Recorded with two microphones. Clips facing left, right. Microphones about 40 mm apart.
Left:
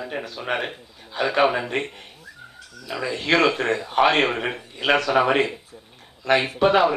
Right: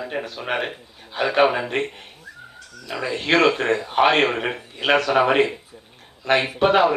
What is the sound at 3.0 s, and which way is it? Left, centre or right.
A man's voice, centre.